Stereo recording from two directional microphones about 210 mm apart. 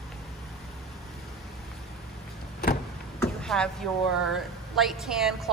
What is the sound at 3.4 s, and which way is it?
A woman's voice, 5° left (ahead or behind).